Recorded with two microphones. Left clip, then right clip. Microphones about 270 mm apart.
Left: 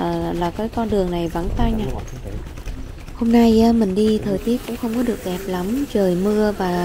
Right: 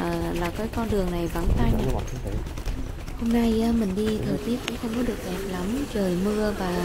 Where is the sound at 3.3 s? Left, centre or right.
Left.